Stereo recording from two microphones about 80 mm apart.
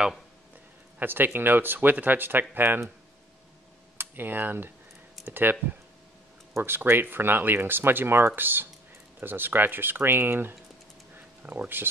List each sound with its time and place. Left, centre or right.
0.9 s speech: right
4.0 s speech: right
11.1 s a sound: right